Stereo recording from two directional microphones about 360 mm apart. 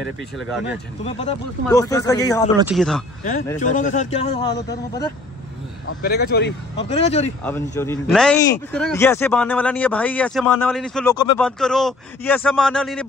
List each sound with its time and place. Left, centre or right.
1.0 s a man's voice: centre
3.5 s a man's voice: left
5.9 s speech: left
6.8 s a man's voice: centre
7.4 s a man's voice: centre